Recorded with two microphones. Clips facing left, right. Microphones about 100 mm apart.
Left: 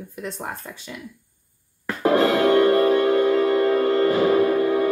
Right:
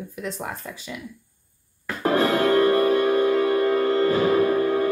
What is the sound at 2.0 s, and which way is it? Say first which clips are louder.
Music: left 2 dB; 20° left (ahead or behind).